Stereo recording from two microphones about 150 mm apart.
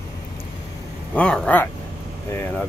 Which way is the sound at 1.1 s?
10° left (ahead or behind).